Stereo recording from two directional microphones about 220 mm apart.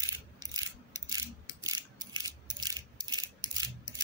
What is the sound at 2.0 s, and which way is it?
Rattle, 20° right (ahead or behind).